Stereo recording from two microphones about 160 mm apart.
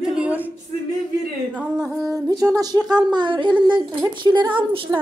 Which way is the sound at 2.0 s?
20° right (ahead or behind).